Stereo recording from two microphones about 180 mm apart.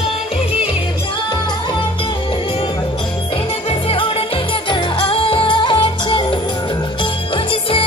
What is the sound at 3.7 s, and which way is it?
Music, 30° left (ahead or behind).